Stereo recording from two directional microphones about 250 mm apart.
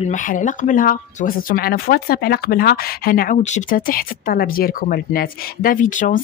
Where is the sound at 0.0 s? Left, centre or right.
Left.